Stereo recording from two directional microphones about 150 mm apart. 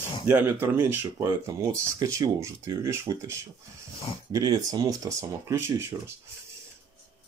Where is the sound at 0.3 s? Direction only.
15° right (ahead or behind).